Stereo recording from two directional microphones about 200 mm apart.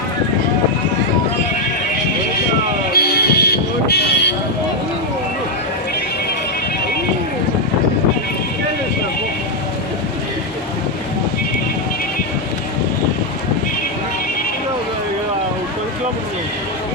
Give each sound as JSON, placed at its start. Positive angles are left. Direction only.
{"t": 3.0, "sound": "music", "side_deg": 50}